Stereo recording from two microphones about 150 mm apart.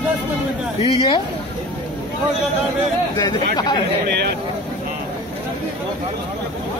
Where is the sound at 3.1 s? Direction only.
25° left (ahead or behind).